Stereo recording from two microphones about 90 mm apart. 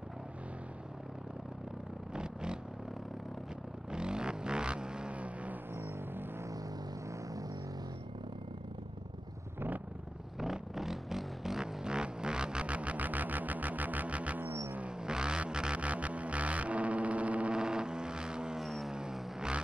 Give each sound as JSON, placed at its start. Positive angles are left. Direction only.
{"t": 2.1, "sound": "vehicle", "side_deg": -10}
{"t": 3.9, "sound": "vehicle", "side_deg": -10}
{"t": 5.8, "sound": "music", "side_deg": -25}
{"t": 7.1, "sound": "a sound", "side_deg": -40}
{"t": 10.4, "sound": "vehicle", "side_deg": -5}
{"t": 14.4, "sound": "a sound", "side_deg": -40}
{"t": 14.7, "sound": "vehicle", "side_deg": -10}